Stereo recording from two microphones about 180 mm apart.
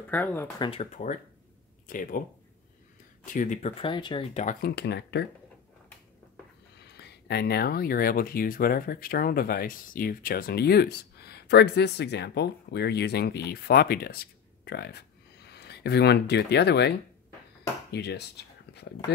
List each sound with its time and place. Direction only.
0.1 s speech: 10° left (ahead or behind)
0.6 s speech: 30° left (ahead or behind)
1.9 s speech: 50° left (ahead or behind)
3.3 s speech: 45° left (ahead or behind)
3.8 s speech: 25° left (ahead or behind)
4.6 s speech: 60° left (ahead or behind)
6.9 s speech: 65° left (ahead or behind)
17.9 s speech: 65° left (ahead or behind)